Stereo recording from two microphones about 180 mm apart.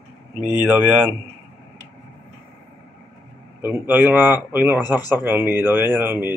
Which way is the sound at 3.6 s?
10° right (ahead or behind).